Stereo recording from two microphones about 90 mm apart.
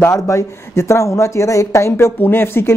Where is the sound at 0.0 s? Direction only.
35° left (ahead or behind).